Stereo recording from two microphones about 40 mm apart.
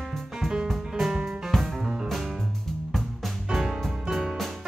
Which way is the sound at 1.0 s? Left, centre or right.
Centre.